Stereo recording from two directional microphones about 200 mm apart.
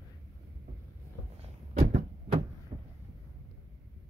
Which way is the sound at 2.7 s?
30° right (ahead or behind).